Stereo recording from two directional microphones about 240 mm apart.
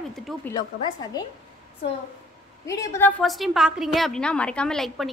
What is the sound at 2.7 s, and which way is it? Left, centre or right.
A woman's voice, centre.